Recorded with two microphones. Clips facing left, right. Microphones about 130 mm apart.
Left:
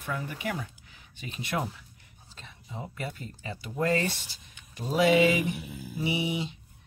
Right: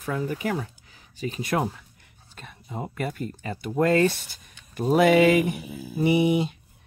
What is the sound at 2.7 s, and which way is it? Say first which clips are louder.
Speech: right 7 dB; 55° right (ahead or behind).